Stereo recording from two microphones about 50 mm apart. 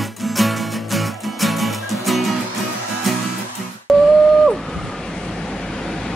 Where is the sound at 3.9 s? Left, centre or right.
Centre.